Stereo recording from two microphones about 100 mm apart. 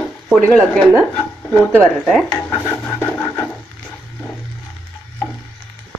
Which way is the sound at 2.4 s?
25° left (ahead or behind).